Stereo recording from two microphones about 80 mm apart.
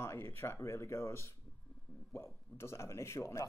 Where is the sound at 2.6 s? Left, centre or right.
Left.